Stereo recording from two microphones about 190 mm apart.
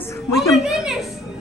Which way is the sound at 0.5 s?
Centre (ahead or behind).